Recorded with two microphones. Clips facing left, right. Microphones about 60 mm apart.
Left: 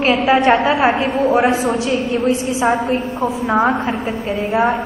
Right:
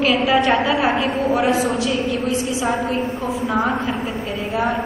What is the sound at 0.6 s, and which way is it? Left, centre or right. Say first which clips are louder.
A woman's voice: left 3 dB; left.